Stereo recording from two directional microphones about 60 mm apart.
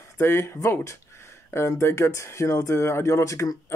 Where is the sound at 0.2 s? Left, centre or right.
Left.